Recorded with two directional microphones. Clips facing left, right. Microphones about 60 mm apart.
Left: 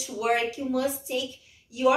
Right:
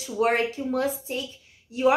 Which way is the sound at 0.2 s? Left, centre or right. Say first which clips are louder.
Right 2 dB; right.